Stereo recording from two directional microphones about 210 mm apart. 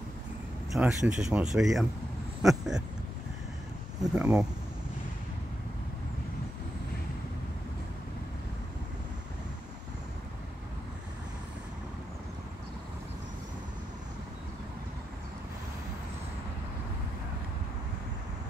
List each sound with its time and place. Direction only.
0.7 s speech: 5° right (ahead or behind)
2.4 s a sound: centre (ahead or behind)
4.1 s speech: 5° right (ahead or behind)